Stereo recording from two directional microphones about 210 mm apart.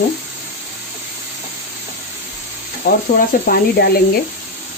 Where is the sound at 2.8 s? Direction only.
45° left (ahead or behind).